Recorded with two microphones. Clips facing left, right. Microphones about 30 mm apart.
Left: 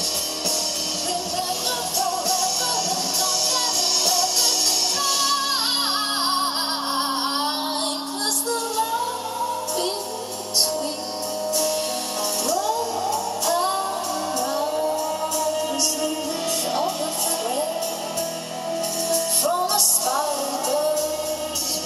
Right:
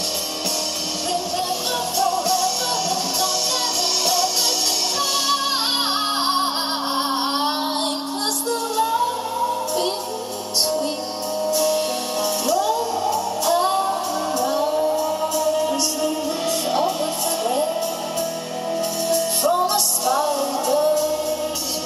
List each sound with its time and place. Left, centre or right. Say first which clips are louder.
2.0 s music: right 4 dB; centre
6.2 s music: right 2 dB; centre
7.0 s a sound: right 3 dB; centre
8.5 s music: right 4 dB; centre
11.5 s music: right 4 dB; centre
18.8 s music: right 3 dB; centre